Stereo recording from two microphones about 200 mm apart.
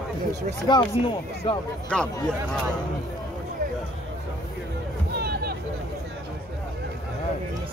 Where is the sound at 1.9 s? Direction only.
5° left (ahead or behind).